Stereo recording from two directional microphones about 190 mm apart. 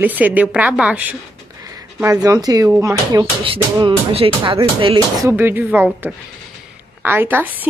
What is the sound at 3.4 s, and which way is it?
Music, 30° right (ahead or behind).